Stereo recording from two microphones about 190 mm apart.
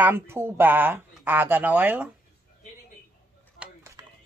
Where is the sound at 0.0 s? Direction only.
10° right (ahead or behind).